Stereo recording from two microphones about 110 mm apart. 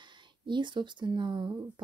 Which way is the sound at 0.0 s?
45° right (ahead or behind).